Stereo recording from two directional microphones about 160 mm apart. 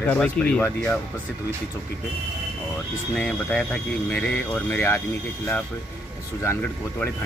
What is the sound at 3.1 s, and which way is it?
Speech, 5° left (ahead or behind).